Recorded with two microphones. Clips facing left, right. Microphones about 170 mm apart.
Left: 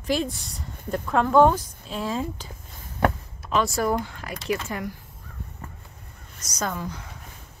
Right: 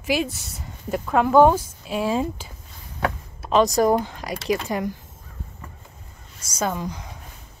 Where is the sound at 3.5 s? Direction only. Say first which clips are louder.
Right 6 dB; 20° right (ahead or behind).